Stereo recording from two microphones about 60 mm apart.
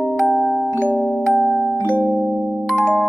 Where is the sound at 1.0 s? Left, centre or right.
Left.